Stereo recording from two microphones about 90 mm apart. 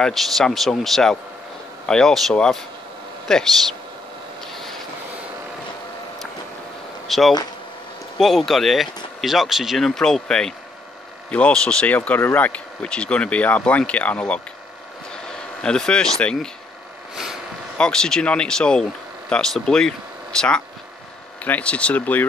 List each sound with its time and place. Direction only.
0.0 s speech: 5° left (ahead or behind)
7.1 s speech: centre (ahead or behind)
15.6 s speech: 10° left (ahead or behind)
17.1 s vehicle: 5° right (ahead or behind)
17.7 s speech: 10° left (ahead or behind)